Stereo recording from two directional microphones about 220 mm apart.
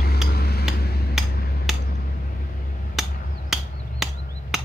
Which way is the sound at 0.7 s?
45° left (ahead or behind).